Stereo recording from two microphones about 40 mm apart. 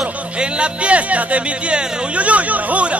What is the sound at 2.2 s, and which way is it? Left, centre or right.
Speech, right.